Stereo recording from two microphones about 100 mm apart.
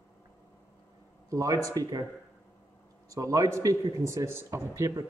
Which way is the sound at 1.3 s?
35° right (ahead or behind).